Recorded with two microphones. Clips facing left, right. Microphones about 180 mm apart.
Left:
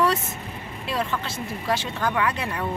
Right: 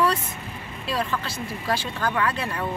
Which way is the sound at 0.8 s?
20° left (ahead or behind).